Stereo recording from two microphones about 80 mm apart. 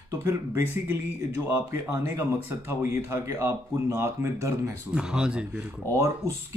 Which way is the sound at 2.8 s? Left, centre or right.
Right.